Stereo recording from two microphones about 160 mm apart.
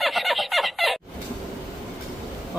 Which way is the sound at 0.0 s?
Centre (ahead or behind).